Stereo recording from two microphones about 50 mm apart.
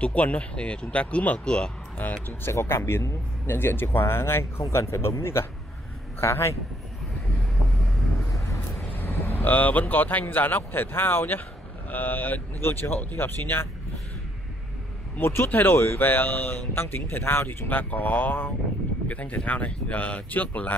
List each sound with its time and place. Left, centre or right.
0.0 s speech: left
2.0 s speech: left
2.5 s speech: left
8.9 s vehicle: left
9.4 s speech: left
12.6 s speech: left
15.1 s speech: left
17.6 s speech: left
19.0 s speech: left